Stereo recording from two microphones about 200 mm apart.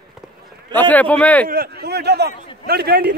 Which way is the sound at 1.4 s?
50° right (ahead or behind).